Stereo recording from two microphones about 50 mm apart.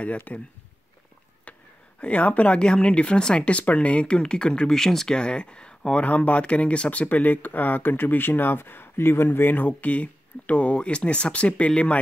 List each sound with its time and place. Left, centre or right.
0.3 s speech: left
2.0 s speech: left
6.0 s speech: left